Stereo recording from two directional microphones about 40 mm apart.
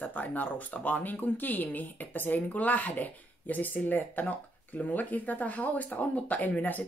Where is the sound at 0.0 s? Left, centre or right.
Left.